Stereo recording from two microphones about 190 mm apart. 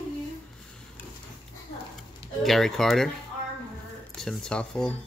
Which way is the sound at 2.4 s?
Centre (ahead or behind).